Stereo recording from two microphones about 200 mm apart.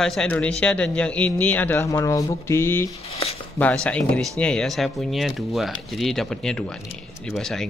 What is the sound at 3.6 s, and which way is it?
A man's voice, 5° left (ahead or behind).